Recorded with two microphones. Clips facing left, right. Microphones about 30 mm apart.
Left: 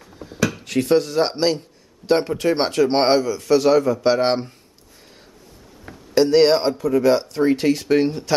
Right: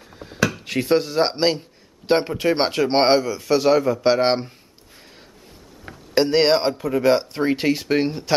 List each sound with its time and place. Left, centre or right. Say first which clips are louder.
0.1 s a sound: even; right
0.7 s a man's voice: left 4 dB; centre
5.9 s speech: left 2 dB; centre
7.6 s a man's voice: left 2 dB; centre